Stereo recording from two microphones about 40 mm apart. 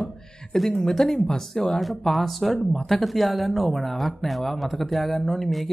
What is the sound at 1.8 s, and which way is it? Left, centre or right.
Speech, centre.